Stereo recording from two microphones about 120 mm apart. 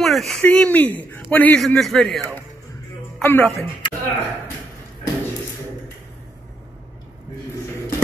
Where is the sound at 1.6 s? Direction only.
5° left (ahead or behind).